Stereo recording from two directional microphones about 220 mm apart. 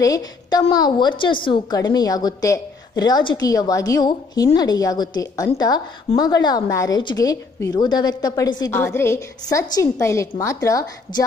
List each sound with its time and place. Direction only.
0.0 s a woman's voice: 15° left (ahead or behind)